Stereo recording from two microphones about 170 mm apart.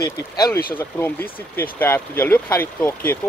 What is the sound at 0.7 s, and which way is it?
Speech, 10° left (ahead or behind).